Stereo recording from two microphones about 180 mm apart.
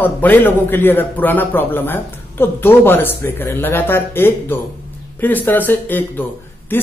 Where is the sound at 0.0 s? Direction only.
10° left (ahead or behind).